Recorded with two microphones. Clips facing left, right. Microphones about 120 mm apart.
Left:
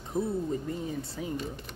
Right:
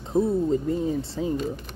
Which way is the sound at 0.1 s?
45° right (ahead or behind).